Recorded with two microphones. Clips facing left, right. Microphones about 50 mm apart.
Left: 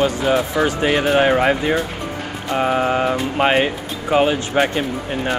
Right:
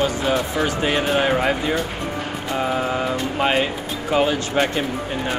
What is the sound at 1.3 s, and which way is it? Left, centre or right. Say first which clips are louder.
Speech: left 3 dB; centre.